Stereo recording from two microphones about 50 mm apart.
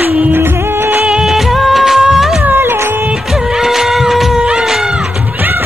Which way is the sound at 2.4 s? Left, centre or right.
Right.